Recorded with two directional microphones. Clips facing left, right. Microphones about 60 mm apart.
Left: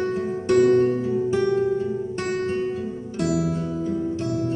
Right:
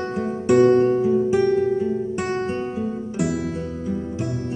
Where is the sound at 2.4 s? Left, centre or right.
Right.